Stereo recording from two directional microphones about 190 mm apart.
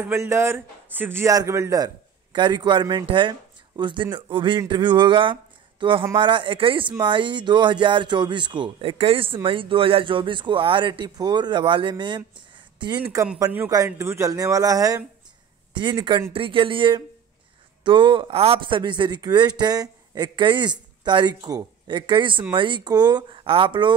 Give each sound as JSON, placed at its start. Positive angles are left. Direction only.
{"t": 0.0, "sound": "a man's voice", "side_deg": -15}